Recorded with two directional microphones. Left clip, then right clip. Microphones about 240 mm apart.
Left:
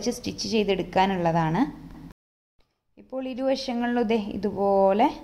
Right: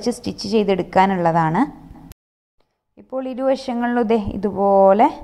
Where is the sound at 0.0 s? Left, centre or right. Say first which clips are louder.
Right 5 dB; centre.